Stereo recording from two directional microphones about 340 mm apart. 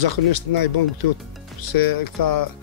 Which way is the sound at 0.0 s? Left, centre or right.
Left.